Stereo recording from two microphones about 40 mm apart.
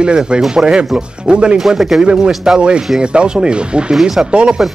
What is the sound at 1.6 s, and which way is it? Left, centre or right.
Speech, centre.